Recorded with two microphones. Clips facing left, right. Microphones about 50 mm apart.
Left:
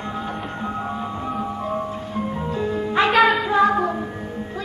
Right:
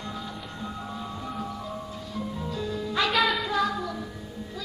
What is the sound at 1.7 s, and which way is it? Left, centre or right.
Music, left.